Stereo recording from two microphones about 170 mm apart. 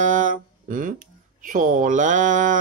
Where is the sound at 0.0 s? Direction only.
50° right (ahead or behind).